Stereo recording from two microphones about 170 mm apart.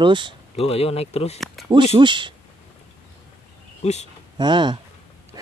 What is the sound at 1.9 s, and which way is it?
Speech, 30° right (ahead or behind).